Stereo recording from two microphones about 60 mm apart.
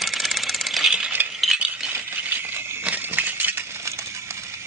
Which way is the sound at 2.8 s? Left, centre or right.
Right.